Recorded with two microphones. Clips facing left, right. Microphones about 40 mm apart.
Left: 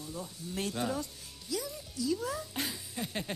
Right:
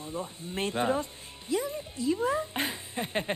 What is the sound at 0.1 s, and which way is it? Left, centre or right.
Speech, right.